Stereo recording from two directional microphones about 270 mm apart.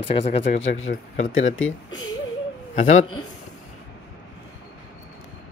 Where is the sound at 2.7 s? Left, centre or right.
Left.